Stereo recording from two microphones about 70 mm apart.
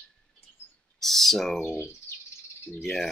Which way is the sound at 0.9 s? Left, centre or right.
Centre.